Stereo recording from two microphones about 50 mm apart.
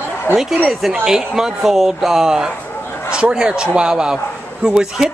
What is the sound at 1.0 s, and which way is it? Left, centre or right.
Speech, centre.